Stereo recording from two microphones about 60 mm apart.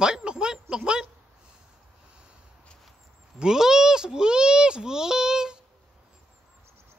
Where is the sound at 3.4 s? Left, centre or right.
Centre.